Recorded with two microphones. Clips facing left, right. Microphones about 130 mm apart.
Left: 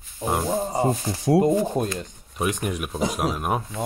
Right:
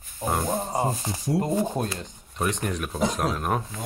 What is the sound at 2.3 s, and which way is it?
Speech, 10° left (ahead or behind).